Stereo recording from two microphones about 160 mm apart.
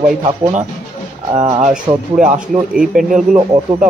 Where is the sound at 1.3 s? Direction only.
40° right (ahead or behind).